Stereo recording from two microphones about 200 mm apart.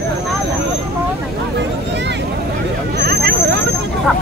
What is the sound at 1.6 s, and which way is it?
Vehicle, 60° right (ahead or behind).